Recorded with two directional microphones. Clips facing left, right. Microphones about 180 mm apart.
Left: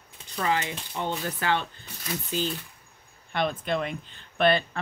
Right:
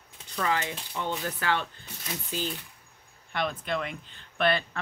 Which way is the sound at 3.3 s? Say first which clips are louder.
Left 3 dB; 25° left (ahead or behind).